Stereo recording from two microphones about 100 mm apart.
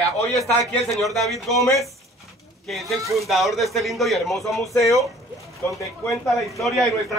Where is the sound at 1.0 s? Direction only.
Centre (ahead or behind).